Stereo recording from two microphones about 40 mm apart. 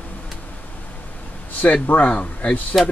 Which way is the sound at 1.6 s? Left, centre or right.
Left.